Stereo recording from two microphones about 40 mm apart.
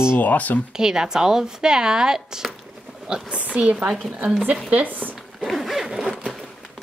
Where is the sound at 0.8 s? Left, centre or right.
Centre.